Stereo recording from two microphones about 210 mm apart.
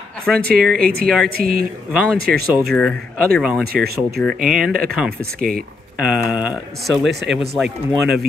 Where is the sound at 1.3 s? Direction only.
45° right (ahead or behind).